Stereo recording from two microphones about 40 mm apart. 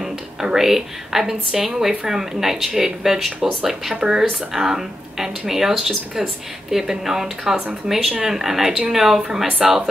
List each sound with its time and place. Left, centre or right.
0.0 s a woman's voice: centre